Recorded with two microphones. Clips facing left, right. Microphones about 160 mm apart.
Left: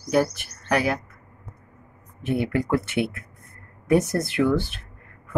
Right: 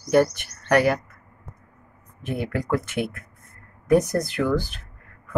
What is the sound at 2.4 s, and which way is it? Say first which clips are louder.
Speech: left 1 dB; centre (ahead or behind).